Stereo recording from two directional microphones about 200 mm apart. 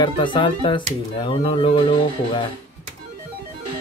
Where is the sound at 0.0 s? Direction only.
25° left (ahead or behind).